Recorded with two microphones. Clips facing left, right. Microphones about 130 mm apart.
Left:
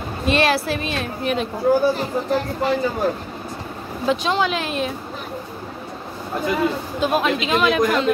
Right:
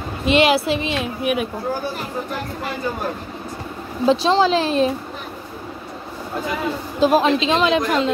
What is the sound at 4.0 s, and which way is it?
Speech, 30° right (ahead or behind).